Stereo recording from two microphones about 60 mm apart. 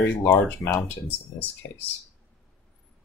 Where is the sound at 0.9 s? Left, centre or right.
Left.